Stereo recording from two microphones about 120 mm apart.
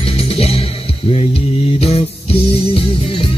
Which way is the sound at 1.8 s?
55° left (ahead or behind).